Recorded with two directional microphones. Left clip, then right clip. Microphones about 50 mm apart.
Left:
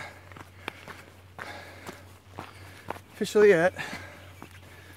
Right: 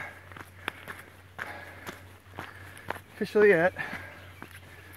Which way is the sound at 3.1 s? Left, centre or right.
Left.